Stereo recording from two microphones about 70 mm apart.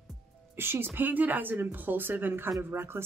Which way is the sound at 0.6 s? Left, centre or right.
Right.